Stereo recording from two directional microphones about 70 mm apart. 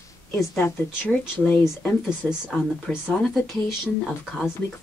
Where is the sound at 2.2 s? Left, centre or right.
Centre.